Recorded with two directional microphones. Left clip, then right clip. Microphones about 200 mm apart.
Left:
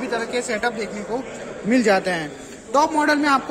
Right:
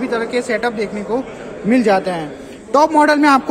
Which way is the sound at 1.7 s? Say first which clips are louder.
Right 4 dB; 10° left (ahead or behind).